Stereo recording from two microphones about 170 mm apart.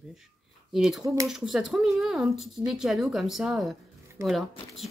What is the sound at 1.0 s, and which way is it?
Speech, 20° right (ahead or behind).